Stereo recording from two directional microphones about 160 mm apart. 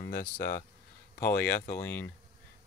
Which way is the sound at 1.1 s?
15° left (ahead or behind).